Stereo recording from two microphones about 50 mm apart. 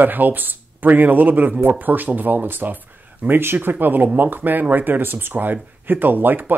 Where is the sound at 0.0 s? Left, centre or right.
Right.